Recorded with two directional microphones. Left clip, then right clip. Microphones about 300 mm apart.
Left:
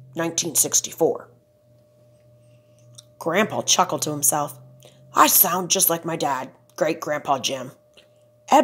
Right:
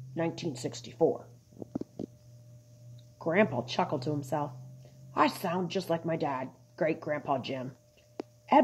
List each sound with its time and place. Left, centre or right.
0.1 s a woman's voice: left
3.3 s a woman's voice: left